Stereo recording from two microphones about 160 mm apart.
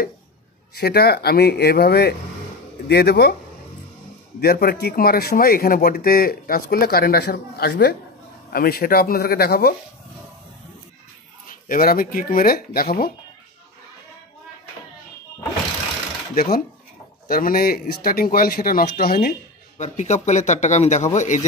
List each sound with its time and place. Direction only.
0.7 s speech: 85° left
4.4 s a man's voice: 75° left (ahead or behind)
8.5 s a man's voice: 70° left (ahead or behind)
11.4 s speech: 60° left (ahead or behind)
16.4 s a man's voice: 75° left (ahead or behind)
17.3 s a man's voice: 65° left (ahead or behind)
19.8 s a man's voice: 45° left (ahead or behind)